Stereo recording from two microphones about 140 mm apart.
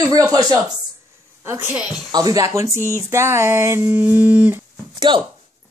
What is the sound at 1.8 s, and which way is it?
Speech, centre (ahead or behind).